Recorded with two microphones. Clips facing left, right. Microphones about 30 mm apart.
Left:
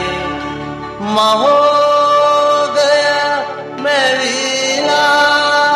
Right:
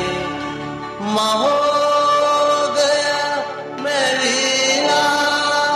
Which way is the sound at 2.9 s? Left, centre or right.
Left.